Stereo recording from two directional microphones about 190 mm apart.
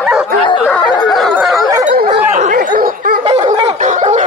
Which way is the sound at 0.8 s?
25° left (ahead or behind).